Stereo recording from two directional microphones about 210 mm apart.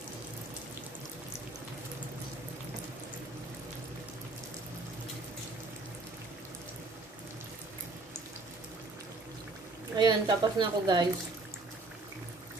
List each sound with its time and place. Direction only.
9.9 s a woman's voice: 20° right (ahead or behind)